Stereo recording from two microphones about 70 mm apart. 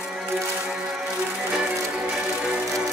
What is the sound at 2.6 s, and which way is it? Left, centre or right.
Music, right.